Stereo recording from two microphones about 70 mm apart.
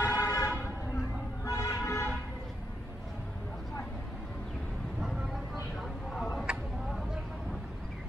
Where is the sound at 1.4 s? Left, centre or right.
Left.